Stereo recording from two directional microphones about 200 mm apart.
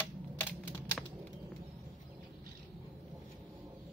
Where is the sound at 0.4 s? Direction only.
10° left (ahead or behind).